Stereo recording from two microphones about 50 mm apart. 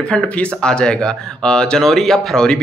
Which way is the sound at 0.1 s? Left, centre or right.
Centre.